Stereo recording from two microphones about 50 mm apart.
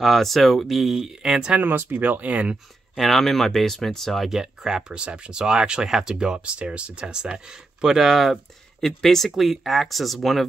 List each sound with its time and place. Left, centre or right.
0.0 s speech: centre
1.6 s speech: right
3.0 s speech: centre
4.3 s speech: centre
8.8 s speech: centre